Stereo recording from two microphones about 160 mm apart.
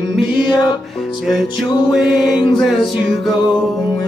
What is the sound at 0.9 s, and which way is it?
Music, centre (ahead or behind).